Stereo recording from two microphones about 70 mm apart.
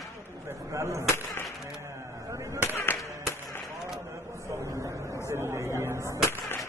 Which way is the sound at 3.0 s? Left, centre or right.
Left.